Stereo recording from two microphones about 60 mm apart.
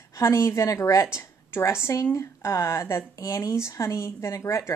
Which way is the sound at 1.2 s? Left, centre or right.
Left.